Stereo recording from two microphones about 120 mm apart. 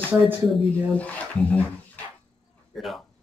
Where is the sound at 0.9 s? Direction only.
10° left (ahead or behind).